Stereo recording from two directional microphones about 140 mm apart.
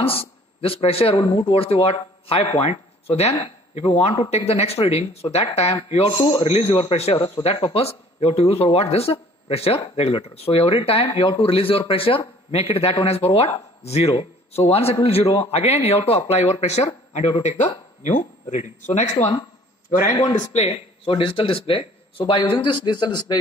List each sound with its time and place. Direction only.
0.0 s speech: 45° left (ahead or behind)
6.1 s speech: 30° left (ahead or behind)
6.4 s speech: 45° left (ahead or behind)
20.2 s speech: 30° left (ahead or behind)
20.5 s speech: 45° left (ahead or behind); by 23.4 s 30° left (ahead or behind)